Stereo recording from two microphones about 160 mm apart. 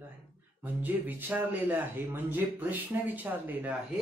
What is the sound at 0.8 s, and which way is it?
Speech, 10° right (ahead or behind).